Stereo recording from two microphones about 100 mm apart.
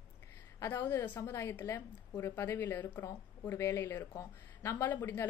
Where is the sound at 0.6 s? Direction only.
25° left (ahead or behind).